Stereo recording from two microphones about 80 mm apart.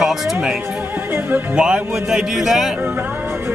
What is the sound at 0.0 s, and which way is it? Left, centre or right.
Speech, centre.